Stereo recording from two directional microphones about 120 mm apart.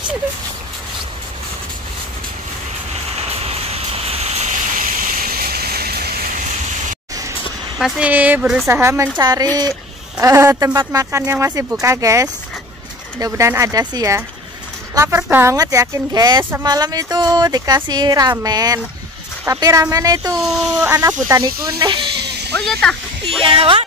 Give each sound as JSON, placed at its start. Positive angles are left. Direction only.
{"t": 3.2, "sound": "a sound", "side_deg": -60}
{"t": 6.3, "sound": "a sound", "side_deg": -90}
{"t": 7.8, "sound": "speech", "side_deg": -10}
{"t": 8.6, "sound": "speech", "side_deg": -25}
{"t": 9.2, "sound": "speech", "side_deg": -35}
{"t": 15.5, "sound": "speech", "side_deg": -30}
{"t": 20.3, "sound": "speech", "side_deg": 0}
{"t": 20.8, "sound": "speech", "side_deg": -20}
{"t": 21.3, "sound": "speech", "side_deg": -35}
{"t": 22.7, "sound": "speech", "side_deg": 5}
{"t": 23.4, "sound": "speech", "side_deg": -50}